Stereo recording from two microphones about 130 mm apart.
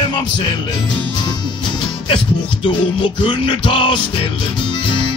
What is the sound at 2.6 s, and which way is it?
Music, 40° left (ahead or behind).